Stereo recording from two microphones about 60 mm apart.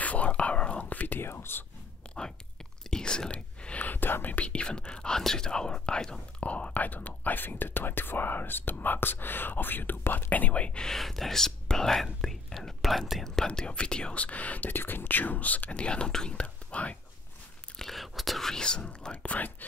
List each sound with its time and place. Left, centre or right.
0.0 s whispering: left
1.3 s whispering: left
2.0 s whispering: centre
3.8 s whispering: left
4.5 s whispering: centre
6.4 s speech: left
13.5 s speech: centre
17.7 s whispering: centre; by 19.5 s left